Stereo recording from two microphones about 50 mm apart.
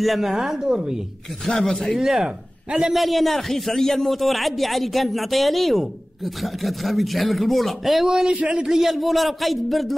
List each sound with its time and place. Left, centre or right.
0.0 s speech: centre
1.4 s speech: centre
2.0 s speech: centre
2.2 s speech: centre
2.9 s a man's voice: centre
8.1 s a man's voice: centre
8.6 s a man's voice: centre